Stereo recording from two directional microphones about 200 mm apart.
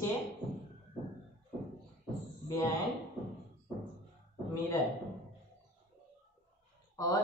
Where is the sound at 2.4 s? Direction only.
15° left (ahead or behind).